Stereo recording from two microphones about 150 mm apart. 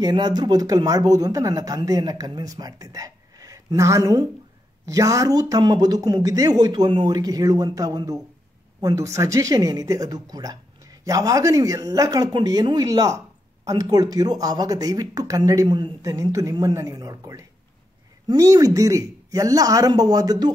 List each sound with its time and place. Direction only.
0.0 s speech: 30° right (ahead or behind)